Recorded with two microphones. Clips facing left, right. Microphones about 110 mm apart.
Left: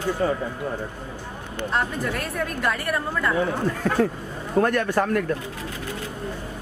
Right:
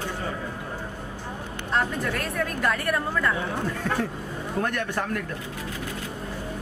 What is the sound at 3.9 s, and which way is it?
Speech, 45° left (ahead or behind).